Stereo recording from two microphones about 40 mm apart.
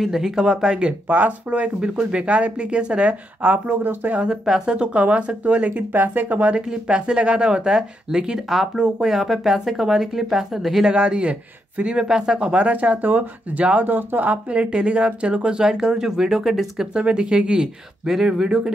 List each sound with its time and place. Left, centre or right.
0.0 s speech: centre
1.0 s speech: right
1.6 s speech: right
3.4 s speech: right
4.5 s speech: centre
4.7 s speech: right
5.0 s speech: right
6.7 s speech: right
9.0 s speech: centre
10.9 s speech: right
12.4 s speech: right
13.8 s speech: right; by 16.8 s centre
16.9 s speech: right